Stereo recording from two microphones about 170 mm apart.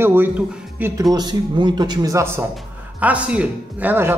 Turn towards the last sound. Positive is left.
turn(degrees=-10)  # may be behind; listen again after turning